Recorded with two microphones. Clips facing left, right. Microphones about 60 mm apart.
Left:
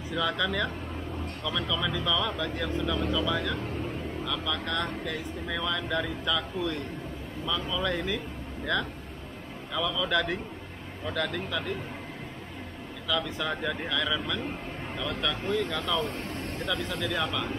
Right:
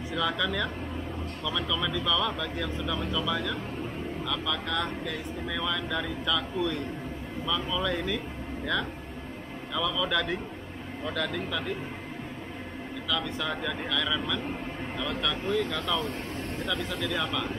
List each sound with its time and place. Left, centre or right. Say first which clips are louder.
0.1 s speech: left 1 dB; centre
9.8 s speech: even; centre
13.1 s speech: left 1 dB; centre